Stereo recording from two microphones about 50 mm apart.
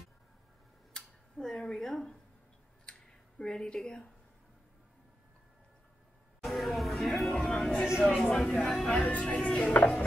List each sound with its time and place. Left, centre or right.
0.9 s tick-tock: centre
2.8 s a sound: centre
6.4 s music: centre
8.1 s speech: centre
8.9 s speech: left